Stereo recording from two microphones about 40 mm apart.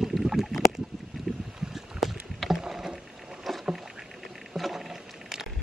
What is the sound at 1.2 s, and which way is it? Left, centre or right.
Boat, centre.